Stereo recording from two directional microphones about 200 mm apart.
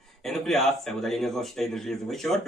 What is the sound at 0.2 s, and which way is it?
A man's voice, centre (ahead or behind).